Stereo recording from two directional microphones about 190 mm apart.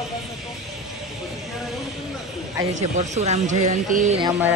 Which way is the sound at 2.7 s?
40° right (ahead or behind).